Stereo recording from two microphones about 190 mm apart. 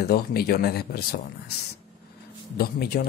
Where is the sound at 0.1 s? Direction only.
55° left (ahead or behind).